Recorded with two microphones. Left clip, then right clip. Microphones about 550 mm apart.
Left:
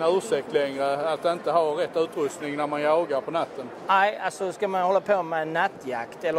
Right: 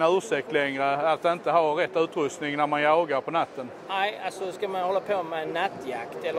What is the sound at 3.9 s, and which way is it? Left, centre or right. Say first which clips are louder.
Speech: left 7 dB; left.